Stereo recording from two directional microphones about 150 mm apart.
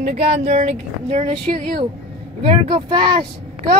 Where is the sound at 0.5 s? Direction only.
45° right (ahead or behind).